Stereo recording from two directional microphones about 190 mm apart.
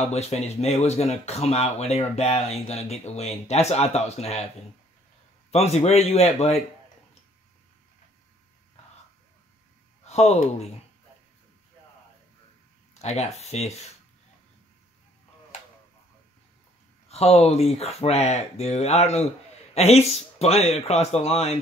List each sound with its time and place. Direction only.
0.0 s speech: 35° left (ahead or behind)
5.5 s speech: 35° left (ahead or behind)
10.0 s speech: 35° left (ahead or behind)
13.0 s speech: 35° left (ahead or behind)
17.1 s speech: 35° left (ahead or behind)